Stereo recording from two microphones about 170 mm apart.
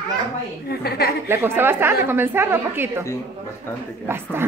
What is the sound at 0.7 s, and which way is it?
Speech, 65° left (ahead or behind).